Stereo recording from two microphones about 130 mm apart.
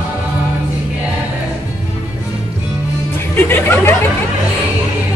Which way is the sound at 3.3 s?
15° left (ahead or behind).